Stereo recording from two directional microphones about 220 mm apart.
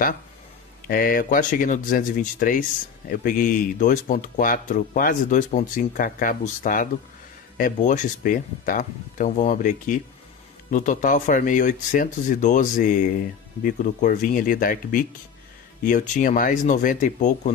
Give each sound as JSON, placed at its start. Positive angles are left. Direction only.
{"t": 0.8, "sound": "speech", "side_deg": 40}